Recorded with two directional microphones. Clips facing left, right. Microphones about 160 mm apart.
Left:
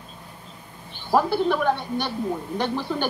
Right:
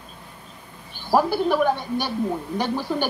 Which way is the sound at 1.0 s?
10° right (ahead or behind).